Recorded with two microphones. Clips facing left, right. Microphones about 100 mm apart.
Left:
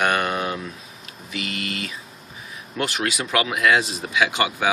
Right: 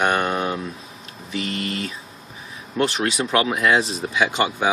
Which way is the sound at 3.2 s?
30° right (ahead or behind).